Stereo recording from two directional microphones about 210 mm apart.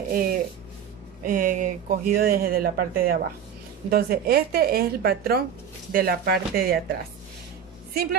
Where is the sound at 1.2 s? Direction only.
40° right (ahead or behind).